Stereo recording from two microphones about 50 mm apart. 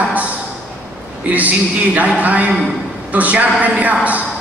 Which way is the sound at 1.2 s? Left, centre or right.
Right.